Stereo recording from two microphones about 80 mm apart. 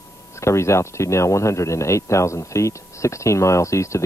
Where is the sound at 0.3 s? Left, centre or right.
Left.